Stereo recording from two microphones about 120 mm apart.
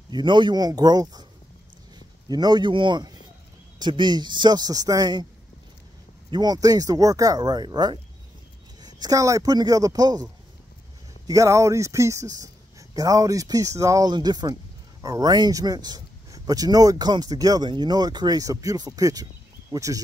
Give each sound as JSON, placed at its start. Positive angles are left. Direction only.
{"t": 0.1, "sound": "a man's voice", "side_deg": -40}
{"t": 6.3, "sound": "speech", "side_deg": -35}